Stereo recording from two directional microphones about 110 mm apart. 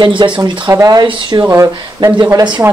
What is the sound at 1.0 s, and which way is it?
Speech, 45° right (ahead or behind).